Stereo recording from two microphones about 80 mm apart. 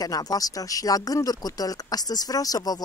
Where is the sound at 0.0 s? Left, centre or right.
Left.